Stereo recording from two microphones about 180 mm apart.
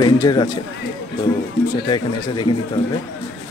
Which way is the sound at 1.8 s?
25° left (ahead or behind).